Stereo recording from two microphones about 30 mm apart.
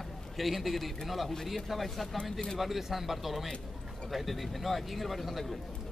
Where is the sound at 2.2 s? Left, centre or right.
Centre.